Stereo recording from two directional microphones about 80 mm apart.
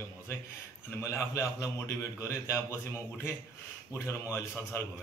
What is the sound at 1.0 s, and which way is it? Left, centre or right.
A man's voice, left.